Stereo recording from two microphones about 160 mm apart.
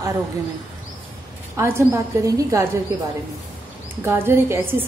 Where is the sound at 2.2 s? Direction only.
20° right (ahead or behind).